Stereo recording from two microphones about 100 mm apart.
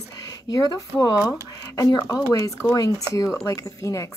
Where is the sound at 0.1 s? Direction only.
35° left (ahead or behind).